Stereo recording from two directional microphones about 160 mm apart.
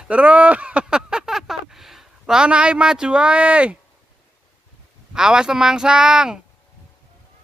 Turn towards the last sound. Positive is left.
turn(degrees=-5)  # may be behind; listen again after turning